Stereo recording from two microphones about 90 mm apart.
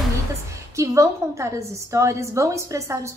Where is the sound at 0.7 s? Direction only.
35° right (ahead or behind).